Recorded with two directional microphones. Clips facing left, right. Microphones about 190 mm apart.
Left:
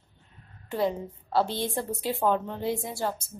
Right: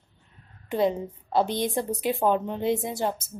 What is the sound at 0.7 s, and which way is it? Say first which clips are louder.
A woman's voice: right 3 dB; 20° right (ahead or behind).